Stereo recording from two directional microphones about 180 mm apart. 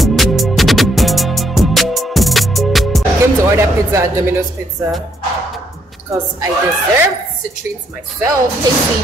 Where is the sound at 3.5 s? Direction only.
15° right (ahead or behind).